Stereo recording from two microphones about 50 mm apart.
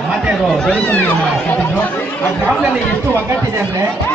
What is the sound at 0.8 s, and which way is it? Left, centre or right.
Speech, left.